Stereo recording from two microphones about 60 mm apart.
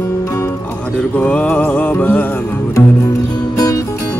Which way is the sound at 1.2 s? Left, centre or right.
Left.